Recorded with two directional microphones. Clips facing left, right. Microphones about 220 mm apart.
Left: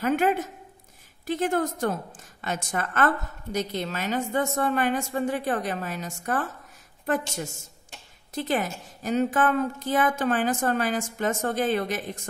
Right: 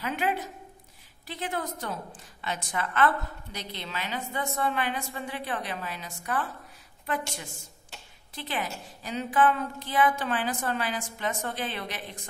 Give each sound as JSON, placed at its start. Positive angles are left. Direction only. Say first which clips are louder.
{"t": 0.0, "sound": "a woman's voice", "louder": "left 7 dB", "side_deg": 50}